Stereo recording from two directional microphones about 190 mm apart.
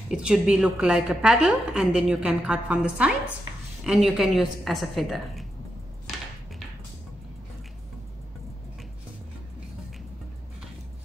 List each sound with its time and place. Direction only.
0.1 s a woman's voice: 5° right (ahead or behind)